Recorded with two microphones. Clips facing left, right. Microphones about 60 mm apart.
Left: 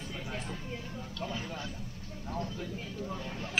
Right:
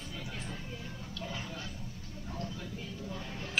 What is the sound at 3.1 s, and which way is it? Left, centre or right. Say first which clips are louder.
Vehicle: left 3 dB; left.